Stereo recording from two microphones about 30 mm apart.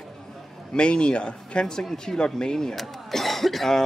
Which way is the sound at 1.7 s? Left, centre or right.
Centre.